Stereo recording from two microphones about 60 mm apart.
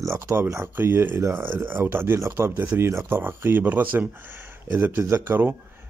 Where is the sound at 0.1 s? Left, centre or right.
Right.